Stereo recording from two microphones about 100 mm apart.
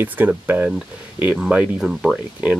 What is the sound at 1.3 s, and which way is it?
Speech, 5° right (ahead or behind).